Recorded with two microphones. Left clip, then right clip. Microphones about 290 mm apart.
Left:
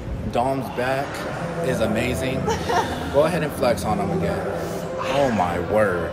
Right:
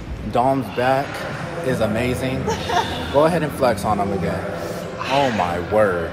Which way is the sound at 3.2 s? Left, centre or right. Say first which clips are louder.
Right 3 dB; centre.